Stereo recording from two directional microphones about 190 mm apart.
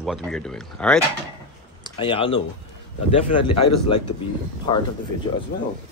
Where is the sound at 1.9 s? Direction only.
25° left (ahead or behind).